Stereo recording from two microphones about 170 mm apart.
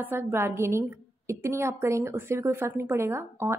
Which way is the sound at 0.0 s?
10° right (ahead or behind).